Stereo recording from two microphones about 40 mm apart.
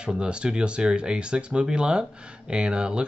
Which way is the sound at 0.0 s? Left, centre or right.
Right.